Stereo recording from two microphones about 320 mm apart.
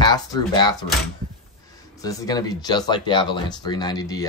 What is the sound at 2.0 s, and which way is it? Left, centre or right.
Speech, centre.